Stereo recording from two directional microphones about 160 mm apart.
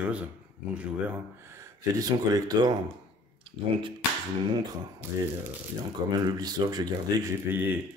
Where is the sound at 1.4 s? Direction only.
20° right (ahead or behind).